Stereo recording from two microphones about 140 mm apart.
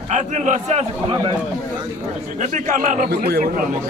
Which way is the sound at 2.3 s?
65° right (ahead or behind).